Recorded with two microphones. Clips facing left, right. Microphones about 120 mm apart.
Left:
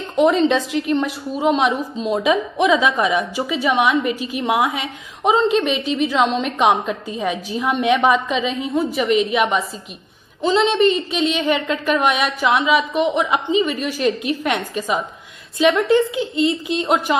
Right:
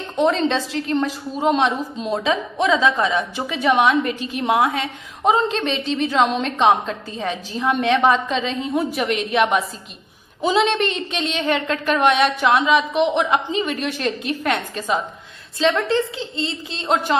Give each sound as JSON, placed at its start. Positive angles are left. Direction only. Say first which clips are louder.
{"t": 0.1, "sound": "a woman's voice", "louder": "left 3 dB", "side_deg": 10}
{"t": 6.4, "sound": "a woman's voice", "louder": "even", "side_deg": 10}